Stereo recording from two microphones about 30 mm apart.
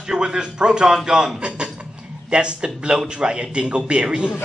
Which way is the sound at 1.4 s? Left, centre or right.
Right.